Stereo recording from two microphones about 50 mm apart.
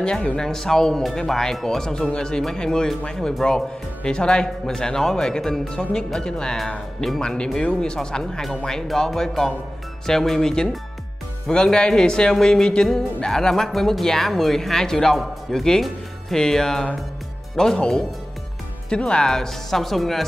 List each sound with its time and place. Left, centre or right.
0.0 s speech: centre